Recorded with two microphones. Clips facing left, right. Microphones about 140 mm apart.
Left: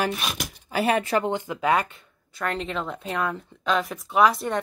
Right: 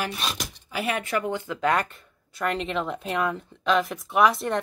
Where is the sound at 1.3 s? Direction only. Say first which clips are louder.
Left 1 dB; 15° left (ahead or behind).